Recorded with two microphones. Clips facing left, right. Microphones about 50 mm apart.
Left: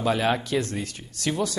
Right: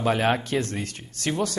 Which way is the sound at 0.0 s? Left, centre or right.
Right.